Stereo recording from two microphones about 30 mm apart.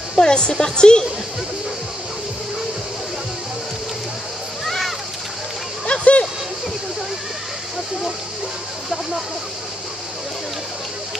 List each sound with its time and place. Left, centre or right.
0.1 s a woman's voice: left
4.6 s splash: centre
5.9 s a sound: left